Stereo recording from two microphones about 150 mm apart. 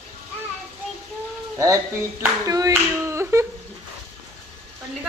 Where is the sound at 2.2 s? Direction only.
20° right (ahead or behind).